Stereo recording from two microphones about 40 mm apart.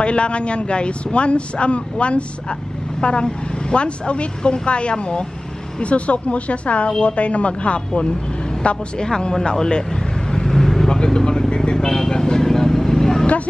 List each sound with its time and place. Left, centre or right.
0.0 s a man's voice: left
10.3 s vehicle: centre